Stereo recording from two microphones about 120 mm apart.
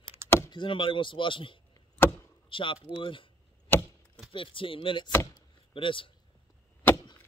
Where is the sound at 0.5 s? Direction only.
40° left (ahead or behind).